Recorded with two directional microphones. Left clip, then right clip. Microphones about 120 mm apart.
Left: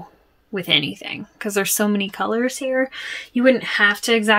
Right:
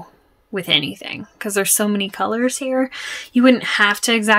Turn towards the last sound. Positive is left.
turn(degrees=-40)  # may be behind; listen again after turning